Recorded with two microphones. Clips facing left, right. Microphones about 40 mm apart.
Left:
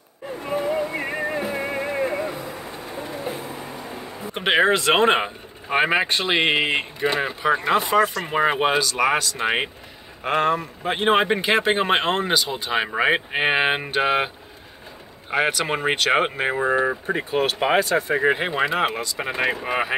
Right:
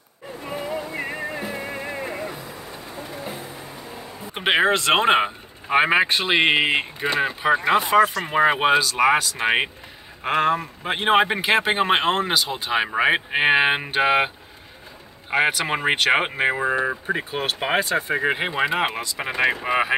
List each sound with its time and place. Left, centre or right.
0.5 s a sound: centre
0.9 s music: centre
2.0 s vehicle: centre
3.5 s a sound: left
4.3 s speech: centre
15.3 s speech: centre
17.7 s speech: centre
18.1 s speech: centre